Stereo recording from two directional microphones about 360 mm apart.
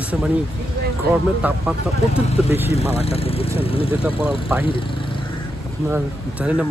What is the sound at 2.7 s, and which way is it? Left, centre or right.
Speech, centre.